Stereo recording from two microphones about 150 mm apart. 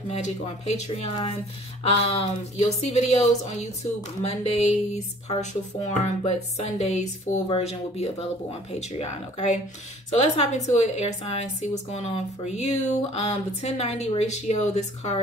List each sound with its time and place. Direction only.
0.8 s a woman's voice: 45° left (ahead or behind)
7.4 s a woman's voice: 40° left (ahead or behind)